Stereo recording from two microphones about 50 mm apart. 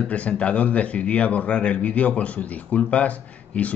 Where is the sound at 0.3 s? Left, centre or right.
Left.